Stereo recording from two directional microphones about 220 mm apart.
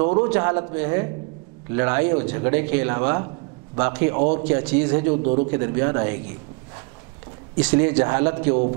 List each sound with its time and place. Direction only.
0.2 s a man's voice: 15° right (ahead or behind)
4.2 s a man's voice: 30° right (ahead or behind)
4.5 s a man's voice: 10° right (ahead or behind)
5.1 s a man's voice: 35° right (ahead or behind)
5.5 s a man's voice: 15° right (ahead or behind)
7.6 s a man's voice: 10° right (ahead or behind)